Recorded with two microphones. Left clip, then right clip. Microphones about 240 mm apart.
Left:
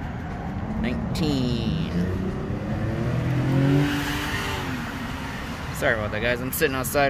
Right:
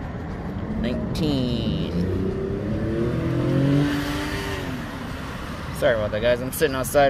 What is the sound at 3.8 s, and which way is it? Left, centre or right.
Vehicle, left.